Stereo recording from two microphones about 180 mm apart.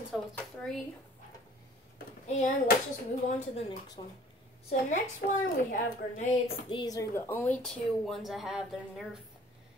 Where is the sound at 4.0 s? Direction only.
25° left (ahead or behind).